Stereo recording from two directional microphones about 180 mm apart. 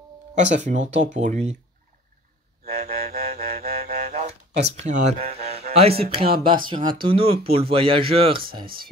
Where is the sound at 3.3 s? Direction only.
35° right (ahead or behind).